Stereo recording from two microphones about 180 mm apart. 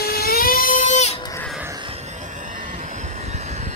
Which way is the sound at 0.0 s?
55° left (ahead or behind).